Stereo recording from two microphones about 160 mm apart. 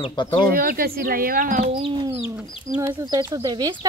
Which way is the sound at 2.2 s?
20° right (ahead or behind).